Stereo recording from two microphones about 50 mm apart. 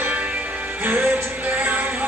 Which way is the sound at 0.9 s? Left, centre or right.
Right.